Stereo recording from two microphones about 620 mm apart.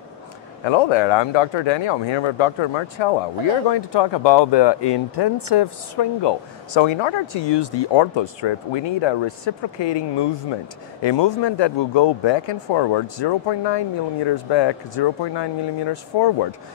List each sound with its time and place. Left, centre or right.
0.7 s speech: left